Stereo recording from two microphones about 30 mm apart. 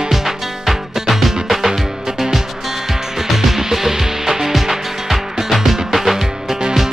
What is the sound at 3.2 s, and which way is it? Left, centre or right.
Music, centre.